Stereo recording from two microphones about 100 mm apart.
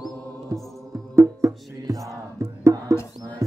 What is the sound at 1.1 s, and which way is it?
Music, 30° right (ahead or behind).